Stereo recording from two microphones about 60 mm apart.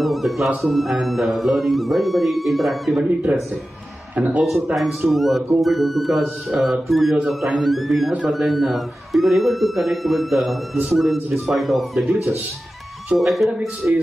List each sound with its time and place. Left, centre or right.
0.0 s a man's voice: centre
3.3 s speech: right
4.7 s a man's voice: centre